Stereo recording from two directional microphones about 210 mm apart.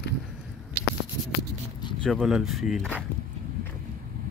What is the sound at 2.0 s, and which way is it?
Speech, centre (ahead or behind).